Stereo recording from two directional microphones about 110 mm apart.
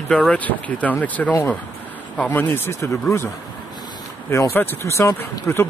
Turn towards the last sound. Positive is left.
turn(degrees=20)  # may be behind; listen again after turning